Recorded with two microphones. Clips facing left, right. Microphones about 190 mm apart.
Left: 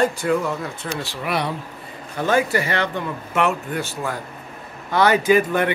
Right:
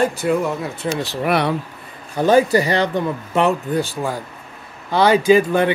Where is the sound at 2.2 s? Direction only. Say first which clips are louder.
Right 6 dB; 35° right (ahead or behind).